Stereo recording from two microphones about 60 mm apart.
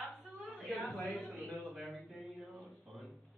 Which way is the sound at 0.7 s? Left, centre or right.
Centre.